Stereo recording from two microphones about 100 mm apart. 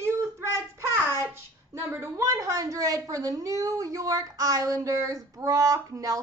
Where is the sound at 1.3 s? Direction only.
30° right (ahead or behind).